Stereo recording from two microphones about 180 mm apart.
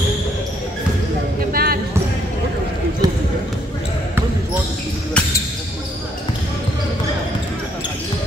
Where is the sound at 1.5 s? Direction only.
55° right (ahead or behind).